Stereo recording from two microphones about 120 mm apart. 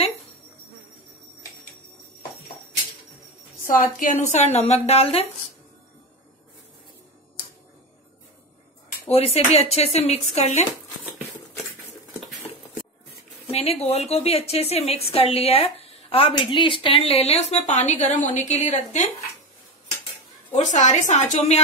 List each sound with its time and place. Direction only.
4.1 s a woman's voice: 75° left (ahead or behind); by 5.2 s 55° left (ahead or behind)
9.1 s a woman's voice: 55° left (ahead or behind)
13.5 s a woman's voice: 60° left (ahead or behind); by 19.0 s 80° left
20.5 s a woman's voice: 90° left; by 21.5 s 75° left (ahead or behind)